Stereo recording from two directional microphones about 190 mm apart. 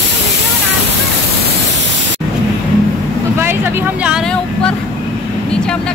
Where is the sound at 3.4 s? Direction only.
10° right (ahead or behind).